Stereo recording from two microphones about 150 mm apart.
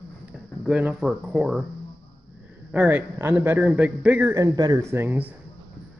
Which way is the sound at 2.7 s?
10° right (ahead or behind).